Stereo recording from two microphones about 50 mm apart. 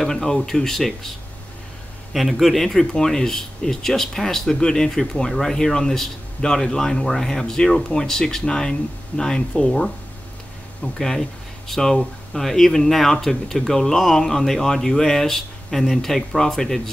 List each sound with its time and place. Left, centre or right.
0.0 s speech: centre
2.1 s speech: centre